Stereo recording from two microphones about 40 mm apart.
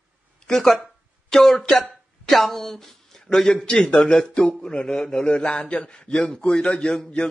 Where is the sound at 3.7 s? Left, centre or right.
Centre.